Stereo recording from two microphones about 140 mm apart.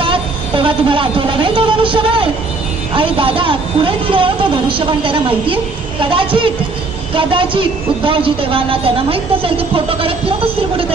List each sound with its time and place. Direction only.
0.0 s a woman's voice: 40° right (ahead or behind)